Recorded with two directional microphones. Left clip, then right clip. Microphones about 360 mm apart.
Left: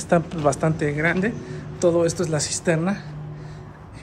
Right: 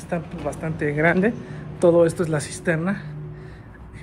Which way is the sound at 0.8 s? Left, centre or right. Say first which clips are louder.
Right 7 dB; centre.